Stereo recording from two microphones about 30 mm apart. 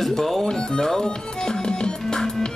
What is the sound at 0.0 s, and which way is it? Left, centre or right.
Speech, centre.